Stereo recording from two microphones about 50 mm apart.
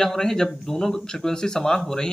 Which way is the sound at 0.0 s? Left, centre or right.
Centre.